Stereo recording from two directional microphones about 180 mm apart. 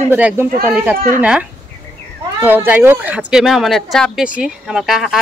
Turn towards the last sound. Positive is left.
turn(degrees=0)  # may be behind; listen again after turning